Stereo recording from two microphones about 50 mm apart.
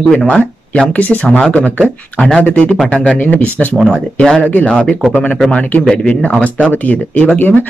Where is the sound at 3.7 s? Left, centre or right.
Centre.